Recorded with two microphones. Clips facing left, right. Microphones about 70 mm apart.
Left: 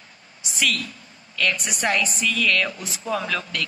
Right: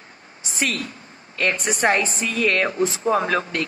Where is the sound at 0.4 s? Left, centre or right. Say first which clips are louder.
Even; right.